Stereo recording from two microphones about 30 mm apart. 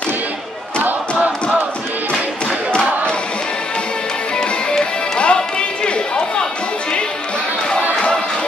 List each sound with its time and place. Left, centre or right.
4.4 s music: left